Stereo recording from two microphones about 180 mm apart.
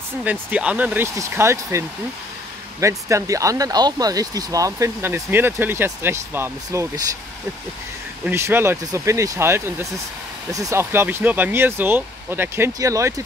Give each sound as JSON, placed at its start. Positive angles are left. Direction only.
{"t": 0.2, "sound": "speech", "side_deg": -10}
{"t": 8.3, "sound": "speech", "side_deg": -15}